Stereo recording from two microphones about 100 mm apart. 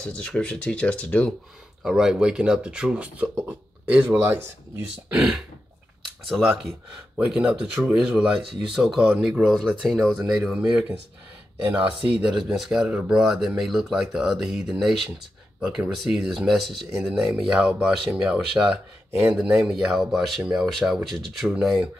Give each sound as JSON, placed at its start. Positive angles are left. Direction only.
{"t": 0.0, "sound": "speech", "side_deg": 10}
{"t": 1.8, "sound": "speech", "side_deg": -5}
{"t": 5.1, "sound": "speech", "side_deg": -5}